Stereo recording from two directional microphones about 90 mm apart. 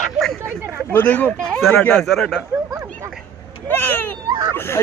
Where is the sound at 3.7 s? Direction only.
25° left (ahead or behind).